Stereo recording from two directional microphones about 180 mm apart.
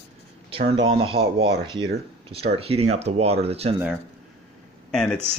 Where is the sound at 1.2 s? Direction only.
55° right (ahead or behind).